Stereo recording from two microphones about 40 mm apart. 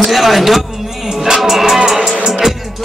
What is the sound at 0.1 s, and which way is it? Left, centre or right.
Speech, centre.